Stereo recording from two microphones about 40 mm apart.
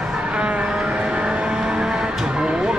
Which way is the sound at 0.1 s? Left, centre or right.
Right.